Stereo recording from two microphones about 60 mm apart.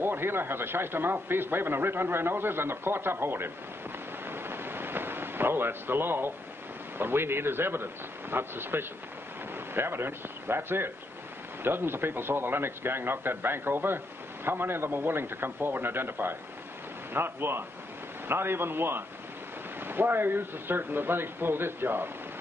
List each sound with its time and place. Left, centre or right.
0.0 s speech: right
4.3 s a sound: right
7.0 s speech: right